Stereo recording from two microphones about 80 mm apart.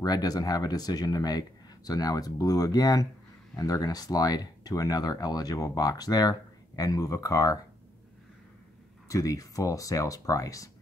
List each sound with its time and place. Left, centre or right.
0.0 s speech: left
9.1 s speech: left